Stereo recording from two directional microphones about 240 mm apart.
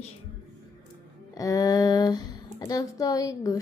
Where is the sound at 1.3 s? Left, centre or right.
Centre.